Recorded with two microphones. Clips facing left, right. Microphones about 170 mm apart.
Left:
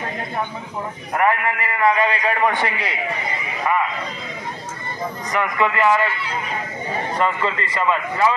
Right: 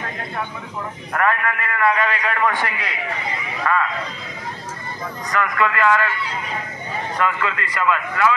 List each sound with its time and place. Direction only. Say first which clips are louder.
1.1 s a man's voice: left 2 dB; 20° left (ahead or behind)
3.7 s a sound: even; 15° left (ahead or behind)
5.3 s a man's voice: even; 20° left (ahead or behind)
7.2 s a man's voice: left 1 dB; 25° left (ahead or behind)